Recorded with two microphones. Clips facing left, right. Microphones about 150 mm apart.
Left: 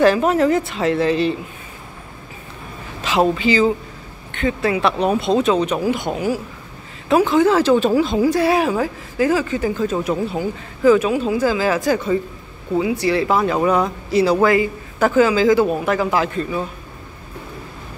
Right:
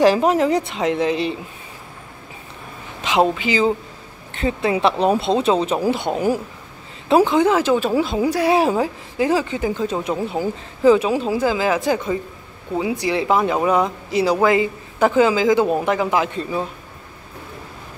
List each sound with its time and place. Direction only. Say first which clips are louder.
0.0 s a woman's voice: even; 20° right (ahead or behind)
3.0 s speech: left 1 dB; 20° right (ahead or behind)
4.4 s speech: even; 25° right (ahead or behind)
7.2 s a woman's voice: left 2 dB; 15° right (ahead or behind)
8.5 s speech: right 1 dB; 25° right (ahead or behind)